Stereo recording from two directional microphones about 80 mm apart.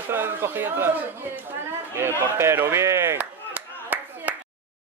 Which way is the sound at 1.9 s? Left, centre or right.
Right.